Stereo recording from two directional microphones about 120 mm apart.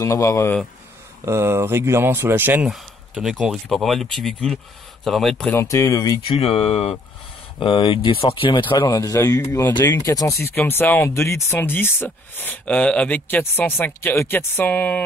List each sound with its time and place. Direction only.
0.0 s speech: 25° left (ahead or behind)
1.2 s speech: 20° right (ahead or behind)
2.7 s speech: 5° right (ahead or behind)
5.5 s speech: 20° left (ahead or behind)
6.2 s speech: 50° left (ahead or behind)
7.6 s speech: 45° left (ahead or behind)
8.9 s speech: 25° left (ahead or behind)